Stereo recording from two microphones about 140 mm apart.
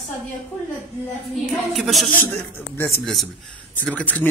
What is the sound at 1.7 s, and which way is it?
Speech, centre (ahead or behind).